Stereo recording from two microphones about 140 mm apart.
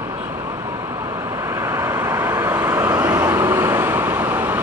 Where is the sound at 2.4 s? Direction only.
25° right (ahead or behind).